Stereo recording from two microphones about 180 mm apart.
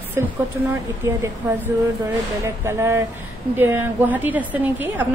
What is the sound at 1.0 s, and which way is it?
A woman's voice, 15° right (ahead or behind).